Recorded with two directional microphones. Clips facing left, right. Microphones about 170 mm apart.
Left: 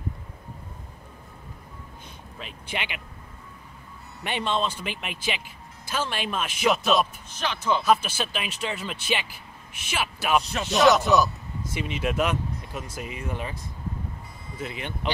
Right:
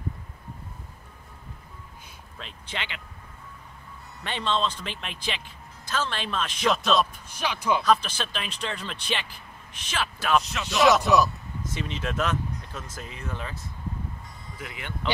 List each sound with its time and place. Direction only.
2.3 s speech: 10° left (ahead or behind)
4.2 s speech: 15° left (ahead or behind)
7.2 s speech: 10° right (ahead or behind)
7.8 s speech: 10° left (ahead or behind)
10.5 s speech: 40° left (ahead or behind)
10.8 s speech: centre (ahead or behind)
11.7 s speech: 10° left (ahead or behind)
14.6 s speech: 25° left (ahead or behind)